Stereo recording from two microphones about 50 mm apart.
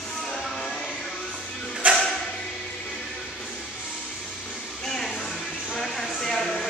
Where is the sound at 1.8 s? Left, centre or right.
Right.